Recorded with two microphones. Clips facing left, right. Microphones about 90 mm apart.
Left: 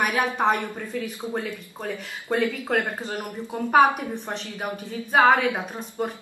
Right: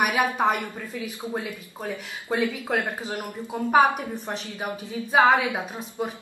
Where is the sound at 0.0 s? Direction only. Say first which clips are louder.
Right 1 dB; 15° right (ahead or behind).